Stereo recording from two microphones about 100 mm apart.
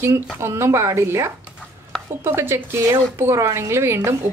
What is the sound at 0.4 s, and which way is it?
Speech, 25° right (ahead or behind).